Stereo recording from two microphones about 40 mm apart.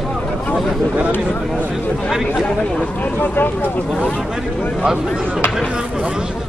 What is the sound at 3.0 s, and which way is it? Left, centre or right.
Speech, left.